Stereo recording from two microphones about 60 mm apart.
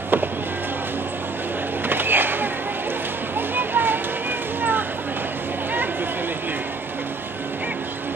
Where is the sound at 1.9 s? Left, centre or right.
Right.